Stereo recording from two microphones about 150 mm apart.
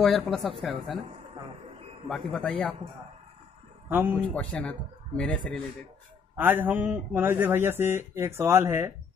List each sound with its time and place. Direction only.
0.0 s speech: centre (ahead or behind)
2.0 s speech: 5° left (ahead or behind)
3.9 s speech: 15° right (ahead or behind)
4.2 s speech: 10° left (ahead or behind)
6.3 s speech: 15° right (ahead or behind)